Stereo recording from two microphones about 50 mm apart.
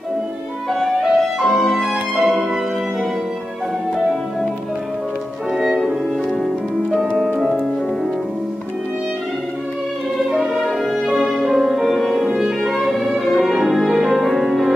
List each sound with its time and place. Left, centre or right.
0.7 s music: centre
5.5 s music: centre
10.1 s music: centre
12.3 s music: centre
12.6 s music: centre